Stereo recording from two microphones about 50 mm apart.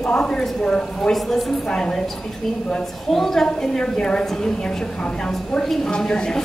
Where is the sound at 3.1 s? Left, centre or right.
Centre.